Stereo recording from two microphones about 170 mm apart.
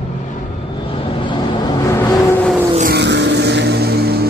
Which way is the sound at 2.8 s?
80° right.